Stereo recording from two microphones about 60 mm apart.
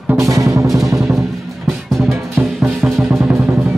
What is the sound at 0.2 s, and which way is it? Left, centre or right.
Music, right.